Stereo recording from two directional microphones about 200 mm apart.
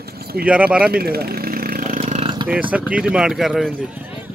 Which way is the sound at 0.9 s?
50° right (ahead or behind).